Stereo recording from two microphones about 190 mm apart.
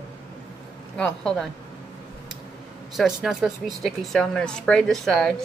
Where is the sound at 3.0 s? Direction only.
Centre (ahead or behind).